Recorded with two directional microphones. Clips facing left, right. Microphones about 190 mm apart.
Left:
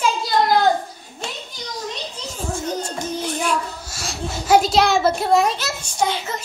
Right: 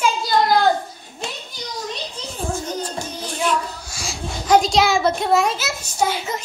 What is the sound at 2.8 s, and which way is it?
Music, 25° left (ahead or behind).